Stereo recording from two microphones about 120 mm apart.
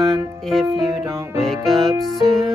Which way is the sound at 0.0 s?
5° left (ahead or behind).